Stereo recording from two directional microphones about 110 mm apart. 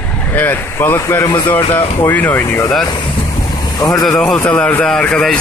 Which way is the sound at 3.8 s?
30° left (ahead or behind).